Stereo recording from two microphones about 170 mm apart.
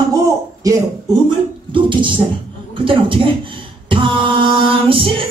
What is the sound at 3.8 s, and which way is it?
Music, 30° right (ahead or behind).